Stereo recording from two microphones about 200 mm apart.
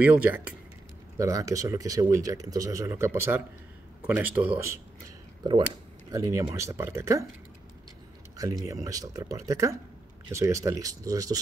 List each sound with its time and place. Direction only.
0.0 s speech: 10° right (ahead or behind)
6.1 s speech: 15° right (ahead or behind)
8.4 s speech: 15° right (ahead or behind)